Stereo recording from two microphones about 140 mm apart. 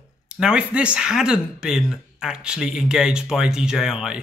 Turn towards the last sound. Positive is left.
turn(degrees=-5)  # may be behind; listen again after turning